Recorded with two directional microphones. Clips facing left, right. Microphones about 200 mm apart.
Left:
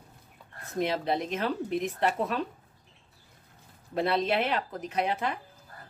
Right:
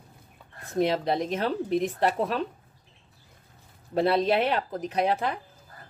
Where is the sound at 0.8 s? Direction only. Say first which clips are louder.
Right 4 dB; 35° right (ahead or behind).